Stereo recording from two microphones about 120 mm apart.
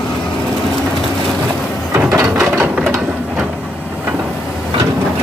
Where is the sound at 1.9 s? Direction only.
25° right (ahead or behind).